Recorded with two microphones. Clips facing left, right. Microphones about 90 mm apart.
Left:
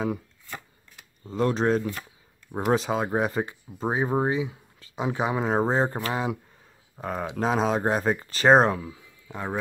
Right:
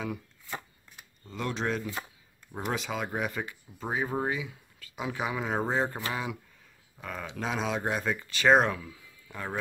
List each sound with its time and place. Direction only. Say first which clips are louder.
1.3 s speech: left 9 dB; 40° left (ahead or behind)
9.3 s speech: left 5 dB; 20° left (ahead or behind)